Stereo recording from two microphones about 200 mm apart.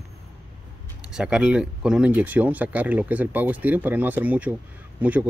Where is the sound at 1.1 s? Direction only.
5° right (ahead or behind).